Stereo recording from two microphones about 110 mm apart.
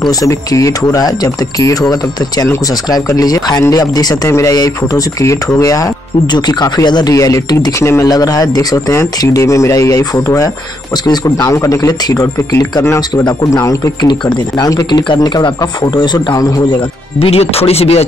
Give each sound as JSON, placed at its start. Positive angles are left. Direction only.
{"t": 0.2, "sound": "speech", "side_deg": 30}
{"t": 7.2, "sound": "speech", "side_deg": 30}
{"t": 14.0, "sound": "speech", "side_deg": 45}
{"t": 17.2, "sound": "speech", "side_deg": 65}